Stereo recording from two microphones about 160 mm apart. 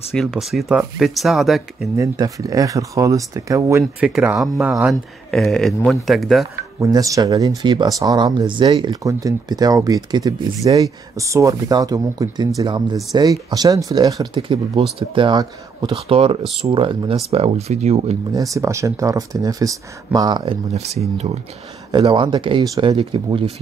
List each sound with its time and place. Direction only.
0.1 s speech: centre (ahead or behind)
2.0 s speech: 20° right (ahead or behind)
4.0 s speech: 5° right (ahead or behind)
6.8 s speech: 20° right (ahead or behind); by 18.1 s 40° right (ahead or behind)
18.3 s speech: 20° right (ahead or behind)
20.7 s speech: 40° right (ahead or behind)
21.9 s speech: 30° right (ahead or behind)